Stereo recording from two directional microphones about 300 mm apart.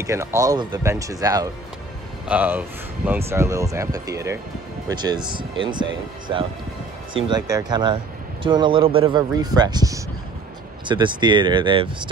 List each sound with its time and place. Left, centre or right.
0.0 s speech: centre